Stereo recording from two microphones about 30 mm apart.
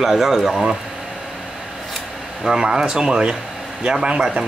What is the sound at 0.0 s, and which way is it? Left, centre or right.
Speech, centre.